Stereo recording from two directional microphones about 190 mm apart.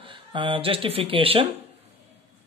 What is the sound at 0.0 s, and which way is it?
Speech, 25° right (ahead or behind).